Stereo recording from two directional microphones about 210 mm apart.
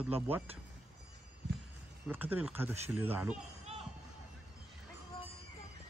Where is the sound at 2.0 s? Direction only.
10° right (ahead or behind).